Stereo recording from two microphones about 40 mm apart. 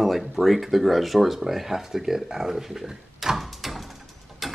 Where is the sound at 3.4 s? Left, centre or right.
Centre.